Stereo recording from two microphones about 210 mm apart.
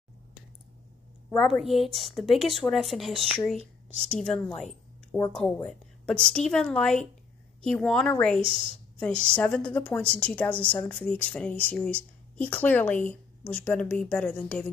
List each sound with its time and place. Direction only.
1.4 s speech: centre (ahead or behind)
8.4 s a woman's voice: 25° right (ahead or behind)
9.0 s a woman's voice: 5° left (ahead or behind)